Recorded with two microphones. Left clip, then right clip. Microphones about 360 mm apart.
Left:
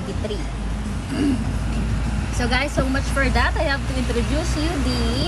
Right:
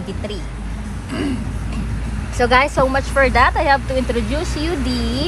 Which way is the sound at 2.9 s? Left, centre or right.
Centre.